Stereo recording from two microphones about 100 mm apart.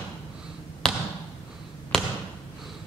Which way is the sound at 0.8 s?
5° left (ahead or behind).